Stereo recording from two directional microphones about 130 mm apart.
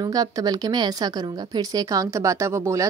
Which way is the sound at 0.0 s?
30° right (ahead or behind).